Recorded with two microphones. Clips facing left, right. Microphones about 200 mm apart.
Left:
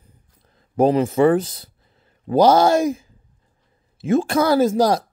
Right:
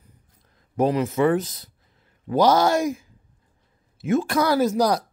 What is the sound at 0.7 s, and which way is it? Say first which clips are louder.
Speech: left 5 dB; 30° left (ahead or behind).